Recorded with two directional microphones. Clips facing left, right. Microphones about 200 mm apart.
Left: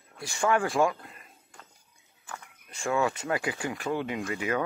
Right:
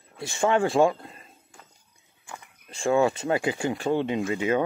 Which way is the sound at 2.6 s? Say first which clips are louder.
Right 6 dB; 25° right (ahead or behind).